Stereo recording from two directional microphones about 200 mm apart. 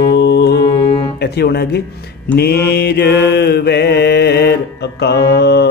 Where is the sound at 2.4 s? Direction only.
55° left (ahead or behind).